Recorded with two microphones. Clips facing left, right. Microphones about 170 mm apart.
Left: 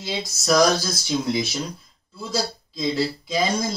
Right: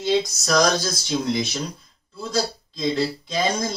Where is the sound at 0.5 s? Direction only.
Centre (ahead or behind).